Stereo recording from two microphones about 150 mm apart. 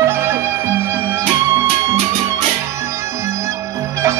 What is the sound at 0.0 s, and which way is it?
Music, 20° right (ahead or behind).